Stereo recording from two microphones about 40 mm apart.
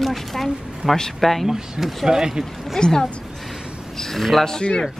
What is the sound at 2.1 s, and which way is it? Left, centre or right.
Speech, centre.